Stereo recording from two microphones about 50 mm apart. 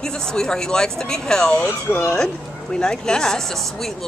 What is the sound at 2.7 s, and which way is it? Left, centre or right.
Speech, centre.